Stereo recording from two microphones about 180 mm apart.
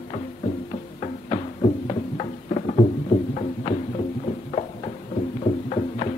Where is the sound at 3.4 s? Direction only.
35° left (ahead or behind).